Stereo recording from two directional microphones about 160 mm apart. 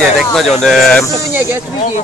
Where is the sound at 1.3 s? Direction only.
15° right (ahead or behind).